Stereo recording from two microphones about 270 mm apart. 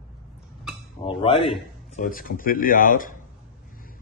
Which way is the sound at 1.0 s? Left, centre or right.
Centre.